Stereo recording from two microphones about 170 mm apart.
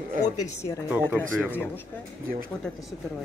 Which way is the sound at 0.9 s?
15° right (ahead or behind).